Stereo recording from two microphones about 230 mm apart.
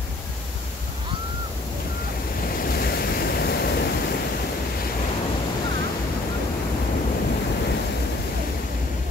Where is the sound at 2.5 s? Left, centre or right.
Left.